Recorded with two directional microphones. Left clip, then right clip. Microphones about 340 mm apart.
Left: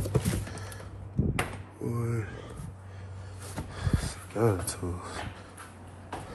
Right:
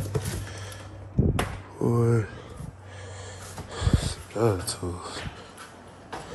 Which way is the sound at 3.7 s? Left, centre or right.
Centre.